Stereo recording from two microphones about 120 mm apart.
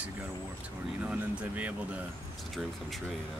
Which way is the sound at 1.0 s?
10° right (ahead or behind).